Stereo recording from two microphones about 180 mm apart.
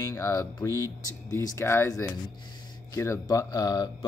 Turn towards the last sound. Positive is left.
turn(degrees=20)  # may be behind; listen again after turning